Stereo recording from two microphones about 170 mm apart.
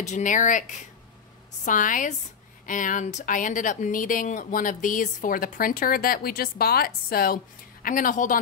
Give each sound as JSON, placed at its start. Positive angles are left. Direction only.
{"t": 0.0, "sound": "speech", "side_deg": 45}